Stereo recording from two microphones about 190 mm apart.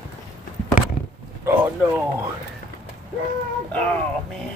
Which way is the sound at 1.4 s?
10° right (ahead or behind).